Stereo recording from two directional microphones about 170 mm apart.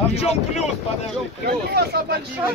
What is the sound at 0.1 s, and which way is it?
Speech, 40° left (ahead or behind).